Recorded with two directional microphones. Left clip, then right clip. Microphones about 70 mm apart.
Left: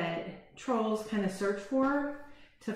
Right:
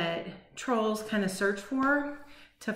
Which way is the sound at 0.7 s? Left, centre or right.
Right.